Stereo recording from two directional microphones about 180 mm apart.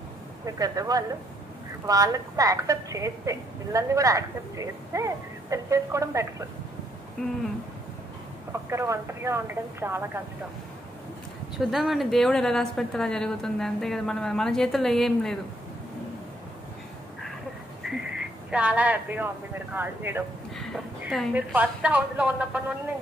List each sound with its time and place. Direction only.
0.6 s a woman's voice: 20° right (ahead or behind)
8.6 s a woman's voice: 15° right (ahead or behind)
11.5 s a woman's voice: centre (ahead or behind)
18.5 s a woman's voice: 5° right (ahead or behind)
20.5 s a woman's voice: centre (ahead or behind)